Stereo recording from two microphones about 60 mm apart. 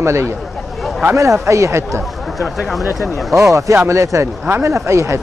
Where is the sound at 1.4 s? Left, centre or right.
Right.